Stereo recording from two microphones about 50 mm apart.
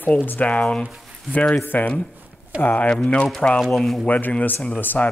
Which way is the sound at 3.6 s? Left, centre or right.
Centre.